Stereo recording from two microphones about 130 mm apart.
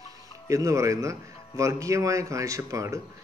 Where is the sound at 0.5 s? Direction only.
25° right (ahead or behind).